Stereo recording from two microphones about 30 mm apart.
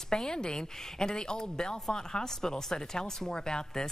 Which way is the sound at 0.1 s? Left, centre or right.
Left.